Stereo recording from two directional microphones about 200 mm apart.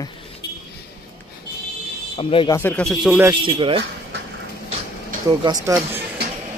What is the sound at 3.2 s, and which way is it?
Speech, 25° right (ahead or behind).